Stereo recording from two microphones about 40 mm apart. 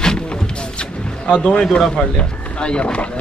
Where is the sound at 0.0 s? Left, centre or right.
Left.